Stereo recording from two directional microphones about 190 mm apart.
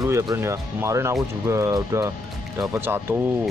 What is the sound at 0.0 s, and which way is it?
Speech, 15° right (ahead or behind).